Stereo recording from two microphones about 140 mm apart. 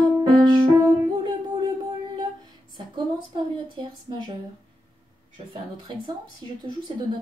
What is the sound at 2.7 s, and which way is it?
Speech, 35° right (ahead or behind).